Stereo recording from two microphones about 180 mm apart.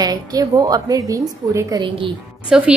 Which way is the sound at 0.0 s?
20° right (ahead or behind).